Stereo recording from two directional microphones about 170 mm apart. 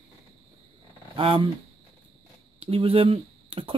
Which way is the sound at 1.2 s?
30° right (ahead or behind).